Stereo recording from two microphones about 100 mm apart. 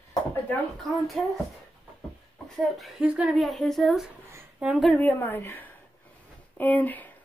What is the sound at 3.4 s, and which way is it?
Speech, centre (ahead or behind).